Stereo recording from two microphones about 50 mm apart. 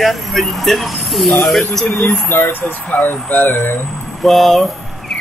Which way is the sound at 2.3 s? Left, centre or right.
Left.